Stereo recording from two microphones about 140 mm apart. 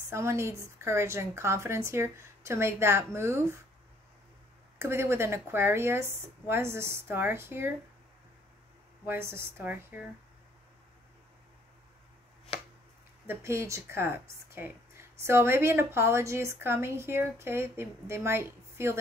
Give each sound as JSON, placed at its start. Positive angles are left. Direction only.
{"t": 0.1, "sound": "speech", "side_deg": -20}
{"t": 4.7, "sound": "speech", "side_deg": -20}
{"t": 9.0, "sound": "speech", "side_deg": -15}
{"t": 13.3, "sound": "speech", "side_deg": -20}